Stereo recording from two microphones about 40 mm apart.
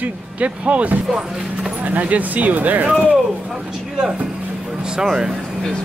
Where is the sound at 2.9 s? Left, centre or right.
Right.